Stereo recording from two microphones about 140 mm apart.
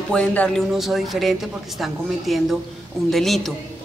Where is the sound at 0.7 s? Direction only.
Centre (ahead or behind).